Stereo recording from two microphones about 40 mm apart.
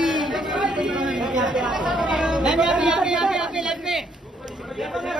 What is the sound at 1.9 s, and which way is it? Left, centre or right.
Chatter, centre.